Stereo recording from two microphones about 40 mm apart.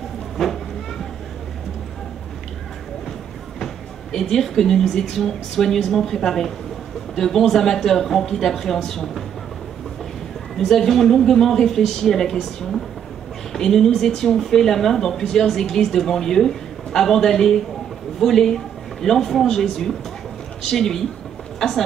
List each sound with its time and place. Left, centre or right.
0.4 s speech: centre
3.5 s a woman's voice: centre
10.6 s speech: centre